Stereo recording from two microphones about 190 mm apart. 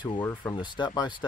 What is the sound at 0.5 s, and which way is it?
Speech, 25° left (ahead or behind).